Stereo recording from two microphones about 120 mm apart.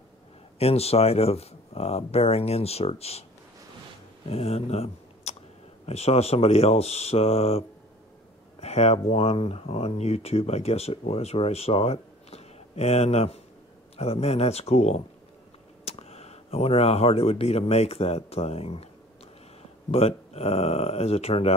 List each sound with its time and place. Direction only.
0.6 s speech: 60° left (ahead or behind)
4.3 s speech: 55° left (ahead or behind)
19.9 s speech: 55° left (ahead or behind)